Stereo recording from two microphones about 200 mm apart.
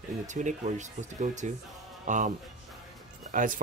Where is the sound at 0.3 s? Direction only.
35° right (ahead or behind).